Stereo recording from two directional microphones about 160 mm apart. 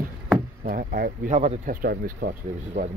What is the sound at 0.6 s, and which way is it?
Speech, 55° right (ahead or behind).